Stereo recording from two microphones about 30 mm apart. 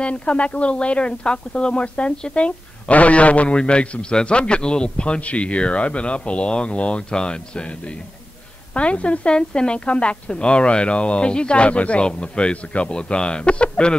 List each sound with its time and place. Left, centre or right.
0.0 s a woman's voice: left
2.9 s a man's voice: left
3.5 s a woman's voice: left
4.0 s a woman's voice: left
5.2 s a woman's voice: left
7.0 s a woman's voice: left
9.3 s a woman's voice: left